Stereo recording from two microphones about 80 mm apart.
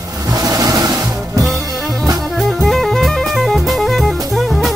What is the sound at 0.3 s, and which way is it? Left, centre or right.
Music, right.